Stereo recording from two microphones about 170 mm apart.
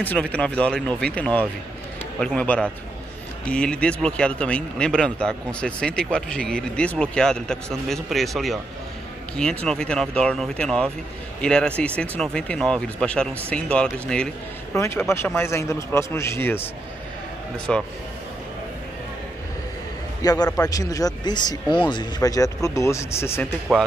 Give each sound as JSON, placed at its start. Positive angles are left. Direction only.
{"t": 0.0, "sound": "a man's voice", "side_deg": 10}
{"t": 14.8, "sound": "a man's voice", "side_deg": 15}
{"t": 17.7, "sound": "speech", "side_deg": 5}
{"t": 20.2, "sound": "speech", "side_deg": 20}
{"t": 23.7, "sound": "speech", "side_deg": 5}